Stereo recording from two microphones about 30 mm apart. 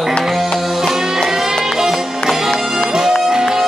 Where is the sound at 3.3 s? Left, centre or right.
Centre.